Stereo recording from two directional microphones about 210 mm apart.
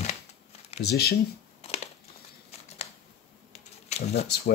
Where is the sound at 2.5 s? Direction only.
30° left (ahead or behind).